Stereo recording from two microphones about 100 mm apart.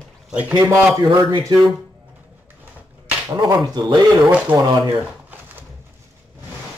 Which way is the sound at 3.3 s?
40° right (ahead or behind).